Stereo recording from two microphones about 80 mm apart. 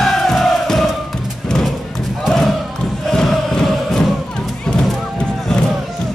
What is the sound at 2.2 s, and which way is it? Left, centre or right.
Battle cry, centre.